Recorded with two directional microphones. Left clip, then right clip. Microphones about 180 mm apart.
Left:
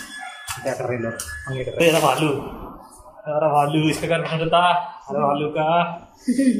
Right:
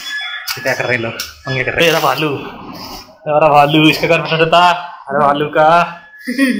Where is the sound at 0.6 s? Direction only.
5° left (ahead or behind).